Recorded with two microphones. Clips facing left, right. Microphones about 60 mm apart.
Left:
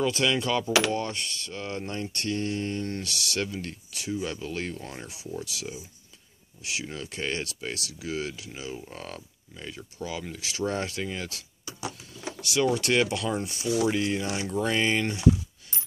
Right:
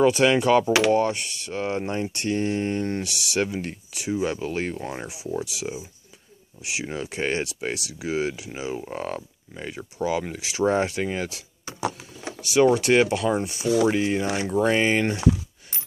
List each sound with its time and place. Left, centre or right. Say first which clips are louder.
0.1 s speech: right 7 dB; right
0.7 s speech: right 6 dB; centre
5.0 s speech: right 7 dB; centre
9.5 s speech: right 6 dB; right
10.4 s speech: right 7 dB; centre
12.1 s vehicle: right 3 dB; centre
12.7 s speech: right 5 dB; centre
13.8 s speech: right 4 dB; centre